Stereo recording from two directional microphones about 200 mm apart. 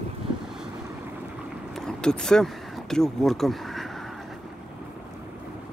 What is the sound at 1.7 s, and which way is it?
Speech, 5° left (ahead or behind).